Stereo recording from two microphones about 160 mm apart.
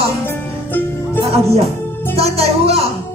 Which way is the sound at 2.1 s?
40° right (ahead or behind).